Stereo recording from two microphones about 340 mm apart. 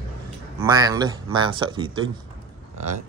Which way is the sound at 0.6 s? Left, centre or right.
Centre.